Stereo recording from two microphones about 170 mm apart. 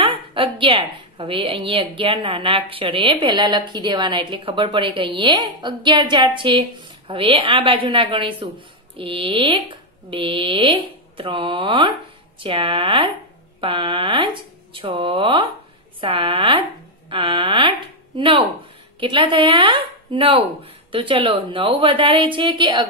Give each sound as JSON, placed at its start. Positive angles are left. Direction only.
{"t": 0.0, "sound": "a woman's voice", "side_deg": -30}